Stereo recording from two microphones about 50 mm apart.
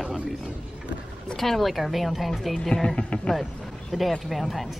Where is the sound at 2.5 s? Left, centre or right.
Centre.